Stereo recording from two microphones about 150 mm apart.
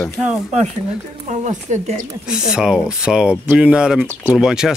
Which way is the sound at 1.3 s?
50° right (ahead or behind).